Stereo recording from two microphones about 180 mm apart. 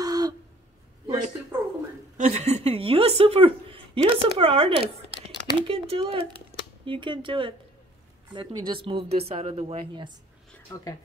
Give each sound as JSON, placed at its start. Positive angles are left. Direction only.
{"t": 0.0, "sound": "a sound", "side_deg": -20}
{"t": 2.1, "sound": "a woman's voice", "side_deg": -35}
{"t": 10.7, "sound": "speech", "side_deg": 20}